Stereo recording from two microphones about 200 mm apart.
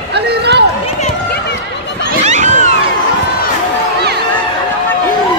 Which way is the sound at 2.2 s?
35° right (ahead or behind).